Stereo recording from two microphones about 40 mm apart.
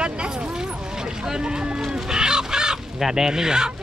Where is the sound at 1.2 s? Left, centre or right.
Centre.